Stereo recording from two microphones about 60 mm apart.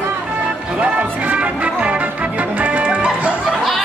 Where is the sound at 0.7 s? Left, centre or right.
Right.